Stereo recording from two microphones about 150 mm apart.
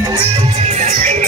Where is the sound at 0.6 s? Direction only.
50° right (ahead or behind).